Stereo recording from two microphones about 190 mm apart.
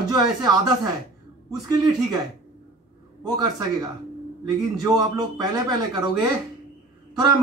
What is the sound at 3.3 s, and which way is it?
Speech, 20° right (ahead or behind).